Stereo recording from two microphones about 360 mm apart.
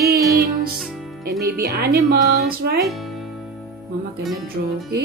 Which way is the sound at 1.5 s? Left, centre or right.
Right.